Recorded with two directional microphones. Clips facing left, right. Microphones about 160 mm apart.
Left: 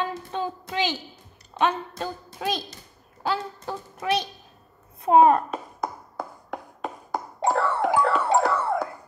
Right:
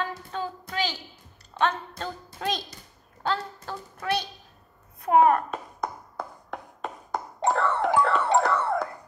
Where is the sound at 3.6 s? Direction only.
20° left (ahead or behind).